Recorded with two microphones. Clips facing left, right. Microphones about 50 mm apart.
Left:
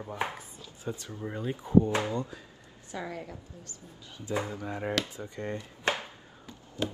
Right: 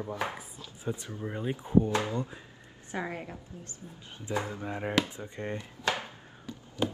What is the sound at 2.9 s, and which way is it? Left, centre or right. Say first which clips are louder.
A woman's voice: right 2 dB; right.